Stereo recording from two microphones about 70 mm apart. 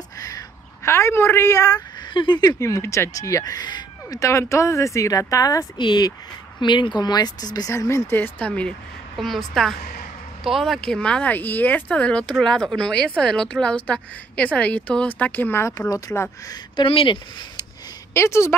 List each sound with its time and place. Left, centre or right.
0.8 s a woman's voice: left
2.2 s speech: left
2.6 s speech: left
3.1 s speech: left
4.2 s speech: left
5.9 s speech: left
6.6 s speech: left
7.7 s speech: left
8.4 s a woman's voice: centre
9.1 s a woman's voice: centre
11.2 s a woman's voice: left
16.8 s speech: left
18.1 s speech: left